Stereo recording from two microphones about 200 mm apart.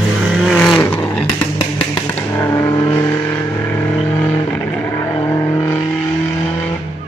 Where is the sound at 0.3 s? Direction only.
Centre (ahead or behind); by 5.9 s 15° left (ahead or behind).